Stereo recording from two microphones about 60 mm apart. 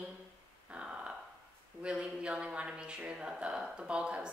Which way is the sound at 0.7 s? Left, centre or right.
Centre.